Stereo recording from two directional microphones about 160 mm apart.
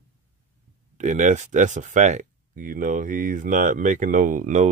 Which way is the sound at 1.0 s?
50° right (ahead or behind).